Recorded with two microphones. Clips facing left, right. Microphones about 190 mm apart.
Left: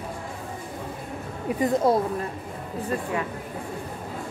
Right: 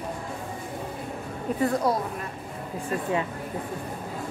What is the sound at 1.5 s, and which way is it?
Speech, 20° left (ahead or behind).